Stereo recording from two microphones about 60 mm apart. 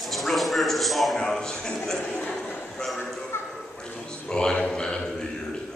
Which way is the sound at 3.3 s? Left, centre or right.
Left.